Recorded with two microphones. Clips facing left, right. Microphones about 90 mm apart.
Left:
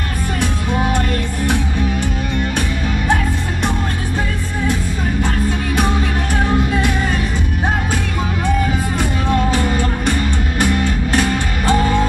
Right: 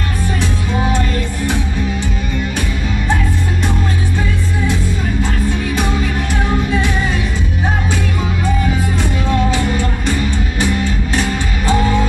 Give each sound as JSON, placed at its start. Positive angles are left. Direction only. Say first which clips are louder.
{"t": 0.9, "sound": "music", "louder": "even", "side_deg": 55}
{"t": 9.5, "sound": "music", "louder": "even", "side_deg": 45}